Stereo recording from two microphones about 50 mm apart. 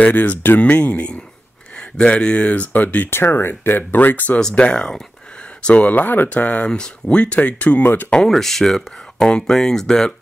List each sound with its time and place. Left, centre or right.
0.0 s speech: left
3.1 s speech: left
4.6 s speech: left
5.8 s speech: left
7.8 s speech: left
8.1 s speech: centre